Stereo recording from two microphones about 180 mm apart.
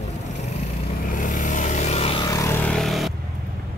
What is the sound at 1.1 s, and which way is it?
Vehicle, 45° left (ahead or behind).